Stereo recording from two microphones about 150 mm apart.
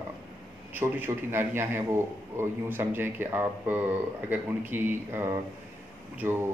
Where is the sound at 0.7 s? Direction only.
15° right (ahead or behind).